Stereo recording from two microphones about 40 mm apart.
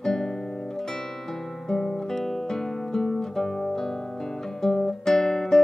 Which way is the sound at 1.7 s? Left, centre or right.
Centre.